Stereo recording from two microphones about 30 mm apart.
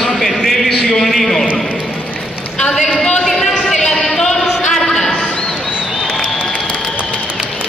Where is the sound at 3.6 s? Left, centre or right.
Left.